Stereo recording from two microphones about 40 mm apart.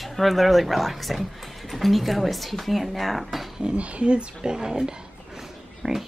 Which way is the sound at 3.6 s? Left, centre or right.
Right.